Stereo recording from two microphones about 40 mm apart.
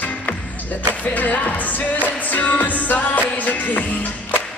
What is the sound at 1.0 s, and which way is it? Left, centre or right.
Music, left.